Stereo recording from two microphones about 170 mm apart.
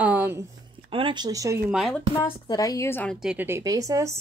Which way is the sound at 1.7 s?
Centre (ahead or behind).